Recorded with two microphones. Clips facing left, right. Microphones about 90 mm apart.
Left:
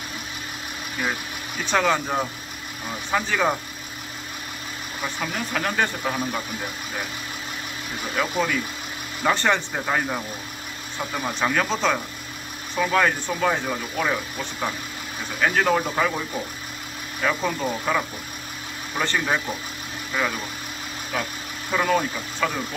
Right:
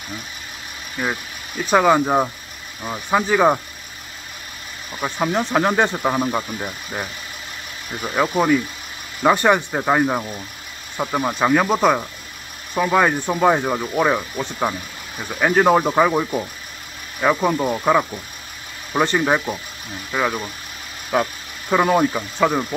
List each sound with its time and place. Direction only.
1.7 s speech: 15° right (ahead or behind)
2.0 s speech: 30° right (ahead or behind)
2.9 s speech: 20° right (ahead or behind)
5.2 s speech: 30° right (ahead or behind)
8.2 s speech: 20° right (ahead or behind)
9.8 s speech: 25° right (ahead or behind)
11.3 s speech: 15° right (ahead or behind)
21.1 s speech: 30° right (ahead or behind)